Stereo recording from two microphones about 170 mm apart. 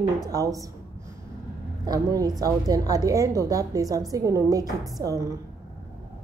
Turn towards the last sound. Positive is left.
turn(degrees=-20)  # may be behind; listen again after turning